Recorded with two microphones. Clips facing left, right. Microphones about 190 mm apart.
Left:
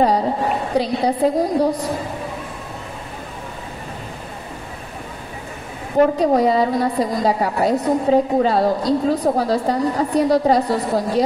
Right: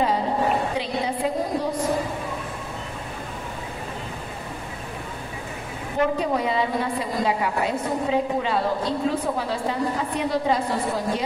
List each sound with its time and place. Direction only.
0.7 s a woman's voice: 35° left (ahead or behind)
5.9 s a woman's voice: 40° left (ahead or behind)